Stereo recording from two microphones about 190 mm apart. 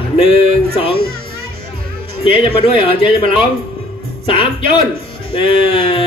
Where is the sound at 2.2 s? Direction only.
30° left (ahead or behind).